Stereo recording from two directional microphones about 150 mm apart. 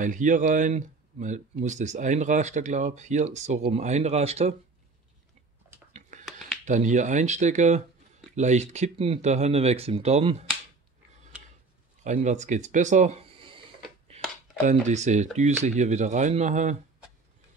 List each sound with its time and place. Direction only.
0.0 s speech: 60° right (ahead or behind)
5.9 s a sound: 55° right (ahead or behind)
6.6 s speech: 55° right (ahead or behind)
12.0 s speech: 50° right (ahead or behind)
13.2 s a sound: 35° right (ahead or behind)
14.7 s speech: 50° right (ahead or behind)